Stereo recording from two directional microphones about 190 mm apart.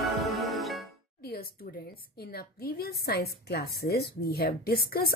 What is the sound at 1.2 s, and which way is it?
A woman's voice, 50° left (ahead or behind).